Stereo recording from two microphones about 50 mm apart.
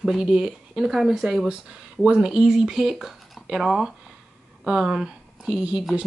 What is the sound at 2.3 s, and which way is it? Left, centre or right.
Speech, centre.